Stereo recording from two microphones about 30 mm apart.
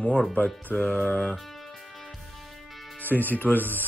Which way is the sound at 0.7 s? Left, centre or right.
Left.